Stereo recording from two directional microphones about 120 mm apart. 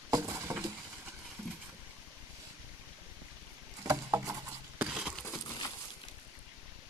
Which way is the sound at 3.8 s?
25° right (ahead or behind).